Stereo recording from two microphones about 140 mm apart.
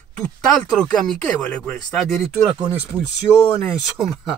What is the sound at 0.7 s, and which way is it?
Speech, 5° left (ahead or behind).